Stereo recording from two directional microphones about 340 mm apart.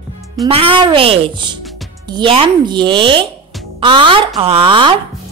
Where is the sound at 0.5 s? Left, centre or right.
Centre.